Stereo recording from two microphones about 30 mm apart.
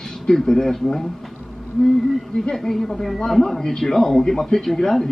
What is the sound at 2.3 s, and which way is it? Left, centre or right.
A man's voice, centre.